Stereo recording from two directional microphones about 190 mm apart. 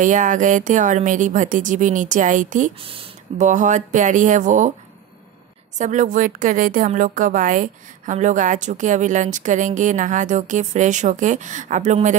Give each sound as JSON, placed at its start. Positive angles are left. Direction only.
{"t": 0.0, "sound": "a woman's voice", "side_deg": -40}
{"t": 2.8, "sound": "a woman's voice", "side_deg": -30}
{"t": 5.8, "sound": "a woman's voice", "side_deg": -40}